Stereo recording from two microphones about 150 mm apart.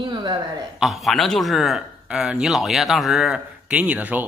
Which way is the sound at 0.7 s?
Centre (ahead or behind).